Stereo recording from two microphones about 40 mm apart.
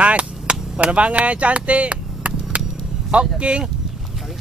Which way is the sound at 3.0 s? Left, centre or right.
Right.